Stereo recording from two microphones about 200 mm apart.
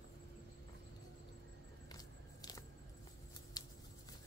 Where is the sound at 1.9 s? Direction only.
20° left (ahead or behind).